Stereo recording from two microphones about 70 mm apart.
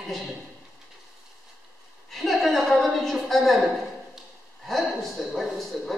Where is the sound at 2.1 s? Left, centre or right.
Centre.